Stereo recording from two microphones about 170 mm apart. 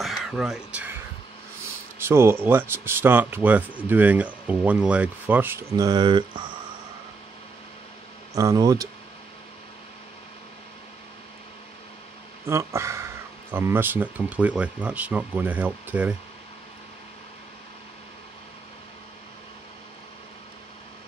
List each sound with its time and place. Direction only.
0.0 s a sound: centre (ahead or behind)
2.0 s speech: 15° right (ahead or behind)
8.4 s speech: 20° right (ahead or behind)
12.4 s speech: 15° right (ahead or behind)